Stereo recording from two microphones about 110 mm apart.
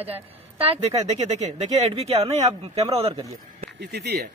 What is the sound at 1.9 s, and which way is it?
Speech, 65° right (ahead or behind).